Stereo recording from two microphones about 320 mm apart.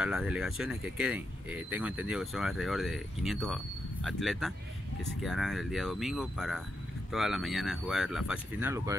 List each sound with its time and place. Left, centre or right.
0.0 s speech: centre